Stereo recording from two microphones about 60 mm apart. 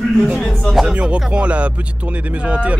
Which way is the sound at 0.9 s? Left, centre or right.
Right.